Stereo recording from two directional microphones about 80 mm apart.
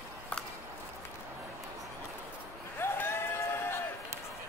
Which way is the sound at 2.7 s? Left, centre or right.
Left.